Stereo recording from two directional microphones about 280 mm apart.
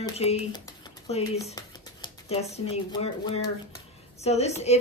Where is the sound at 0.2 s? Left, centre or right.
Left.